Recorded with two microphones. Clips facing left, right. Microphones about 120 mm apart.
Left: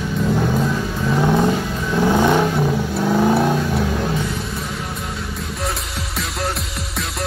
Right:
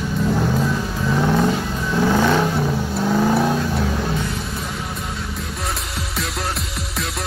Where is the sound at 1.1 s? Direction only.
10° left (ahead or behind).